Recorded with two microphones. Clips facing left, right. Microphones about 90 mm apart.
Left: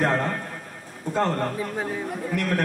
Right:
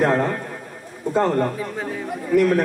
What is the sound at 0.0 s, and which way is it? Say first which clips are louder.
A man's voice: right 4 dB; 5° right (ahead or behind).